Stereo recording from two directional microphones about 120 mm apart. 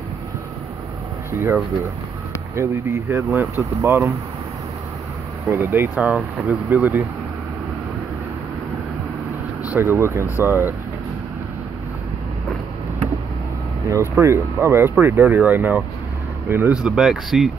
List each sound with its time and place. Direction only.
1.3 s speech: 20° right (ahead or behind)
5.5 s speech: 20° right (ahead or behind)
9.7 s speech: 20° right (ahead or behind)
14.1 s speech: 20° right (ahead or behind)
16.8 s speech: 5° right (ahead or behind)